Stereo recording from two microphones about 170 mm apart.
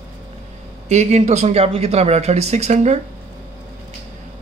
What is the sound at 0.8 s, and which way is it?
Speech, 40° right (ahead or behind).